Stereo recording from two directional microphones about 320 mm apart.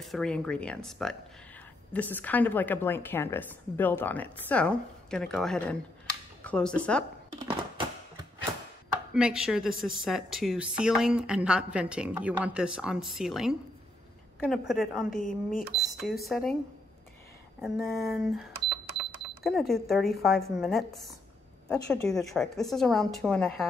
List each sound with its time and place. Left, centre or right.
0.0 s a woman's voice: centre
7.4 s a sound: centre
9.1 s a woman's voice: centre
14.7 s a woman's voice: centre
15.0 s speech: left
16.0 s a woman's voice: centre
17.6 s a woman's voice: centre